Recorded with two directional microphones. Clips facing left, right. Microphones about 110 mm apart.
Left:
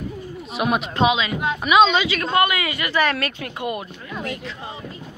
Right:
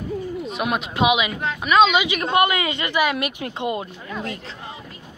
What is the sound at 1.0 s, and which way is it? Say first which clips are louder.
Speech: right 1 dB; 15° right (ahead or behind).